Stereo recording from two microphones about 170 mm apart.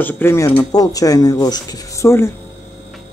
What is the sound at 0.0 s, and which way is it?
Speech, 15° left (ahead or behind).